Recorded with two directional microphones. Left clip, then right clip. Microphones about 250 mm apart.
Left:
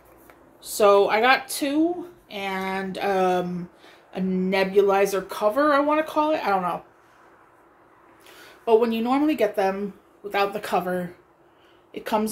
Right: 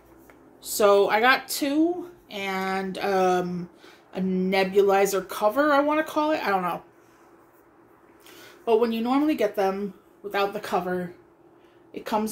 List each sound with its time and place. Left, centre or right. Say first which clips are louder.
0.6 s speech: left 2 dB; centre
8.3 s speech: left 3 dB; centre